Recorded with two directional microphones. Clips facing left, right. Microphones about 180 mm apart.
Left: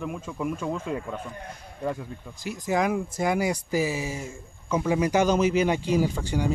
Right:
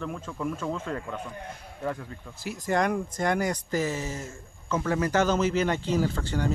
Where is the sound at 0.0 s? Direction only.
10° left (ahead or behind).